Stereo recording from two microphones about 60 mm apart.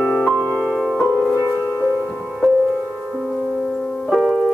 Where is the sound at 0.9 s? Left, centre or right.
Centre.